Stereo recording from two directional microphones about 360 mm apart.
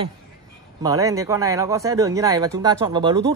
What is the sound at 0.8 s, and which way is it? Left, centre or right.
Speech, centre.